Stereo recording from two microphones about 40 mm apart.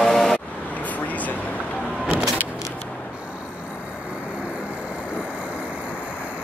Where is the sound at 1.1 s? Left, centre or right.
Left.